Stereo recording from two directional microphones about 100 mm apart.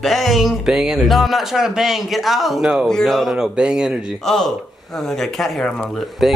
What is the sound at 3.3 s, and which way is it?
Speech, 10° right (ahead or behind).